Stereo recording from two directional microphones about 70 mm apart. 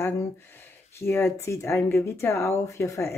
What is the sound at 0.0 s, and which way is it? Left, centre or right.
Speech, left.